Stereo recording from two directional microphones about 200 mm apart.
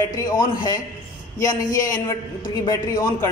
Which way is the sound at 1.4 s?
20° left (ahead or behind).